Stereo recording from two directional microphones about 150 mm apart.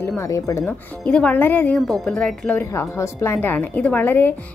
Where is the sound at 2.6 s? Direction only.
20° left (ahead or behind).